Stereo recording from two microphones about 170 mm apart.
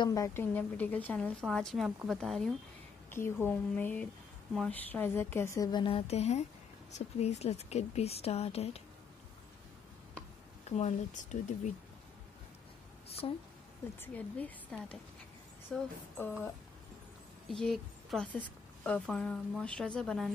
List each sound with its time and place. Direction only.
0.0 s a woman's voice: 20° left (ahead or behind); by 2.5 s 5° left (ahead or behind)
3.1 s a woman's voice: 15° left (ahead or behind); by 8.8 s 35° left (ahead or behind)
10.6 s a woman's voice: 40° left (ahead or behind)
13.2 s speech: 30° left (ahead or behind)
14.0 s a woman's voice: 10° left (ahead or behind)
17.5 s a woman's voice: 5° left (ahead or behind)